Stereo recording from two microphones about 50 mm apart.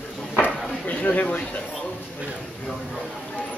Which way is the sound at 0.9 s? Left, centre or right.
Left.